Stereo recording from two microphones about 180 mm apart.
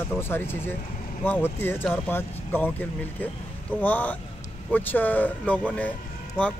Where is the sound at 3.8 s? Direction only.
10° left (ahead or behind).